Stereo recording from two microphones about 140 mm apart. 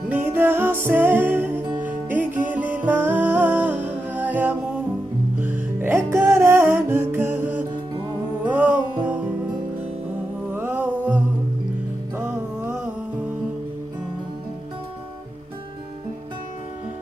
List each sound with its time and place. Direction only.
0.1 s music: 15° right (ahead or behind)
10.5 s music: 15° right (ahead or behind)